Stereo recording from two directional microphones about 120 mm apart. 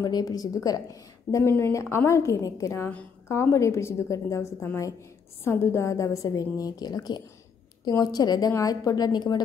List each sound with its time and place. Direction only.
0.0 s a woman's voice: 35° left (ahead or behind)